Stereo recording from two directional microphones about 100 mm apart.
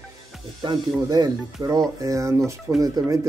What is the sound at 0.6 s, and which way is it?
Speech, 40° right (ahead or behind).